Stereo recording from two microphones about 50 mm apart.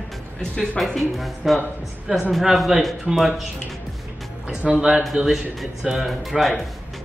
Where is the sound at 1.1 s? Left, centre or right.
Centre.